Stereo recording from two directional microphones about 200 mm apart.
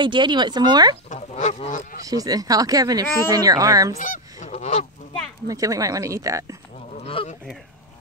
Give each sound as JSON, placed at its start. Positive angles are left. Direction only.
{"t": 0.0, "sound": "speech", "side_deg": -25}
{"t": 1.0, "sound": "goose", "side_deg": 35}
{"t": 2.0, "sound": "speech", "side_deg": -20}
{"t": 4.0, "sound": "goose", "side_deg": 40}
{"t": 5.5, "sound": "speech", "side_deg": -15}
{"t": 7.0, "sound": "speech", "side_deg": 30}